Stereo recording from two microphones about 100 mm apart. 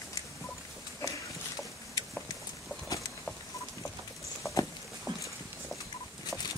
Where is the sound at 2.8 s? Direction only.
30° left (ahead or behind).